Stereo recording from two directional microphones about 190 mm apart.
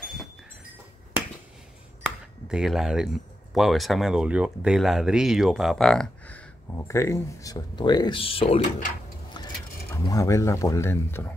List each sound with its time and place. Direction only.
0.0 s a sound: centre (ahead or behind)
2.5 s speech: centre (ahead or behind); by 8.9 s 35° left (ahead or behind)
10.0 s speech: 15° left (ahead or behind)